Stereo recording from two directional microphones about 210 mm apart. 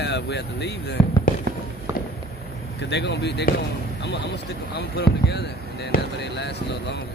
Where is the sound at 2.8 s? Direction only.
55° left (ahead or behind).